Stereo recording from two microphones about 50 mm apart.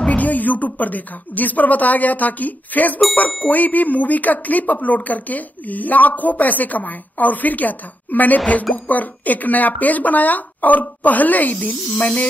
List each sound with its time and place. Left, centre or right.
0.1 s speech: left